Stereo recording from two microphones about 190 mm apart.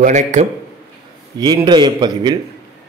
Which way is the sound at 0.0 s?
40° right (ahead or behind).